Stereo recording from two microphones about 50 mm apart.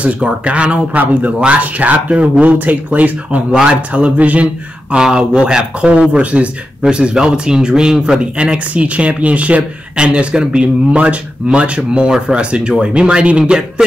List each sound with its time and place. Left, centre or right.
0.0 s speech: right
4.9 s speech: centre